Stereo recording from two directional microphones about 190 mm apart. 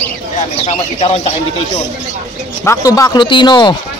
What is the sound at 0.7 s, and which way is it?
Speech, 30° left (ahead or behind).